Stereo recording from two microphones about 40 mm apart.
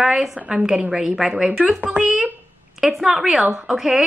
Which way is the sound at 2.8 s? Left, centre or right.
Centre.